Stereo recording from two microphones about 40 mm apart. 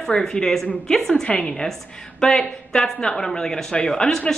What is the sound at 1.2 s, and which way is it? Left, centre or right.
Speech, left.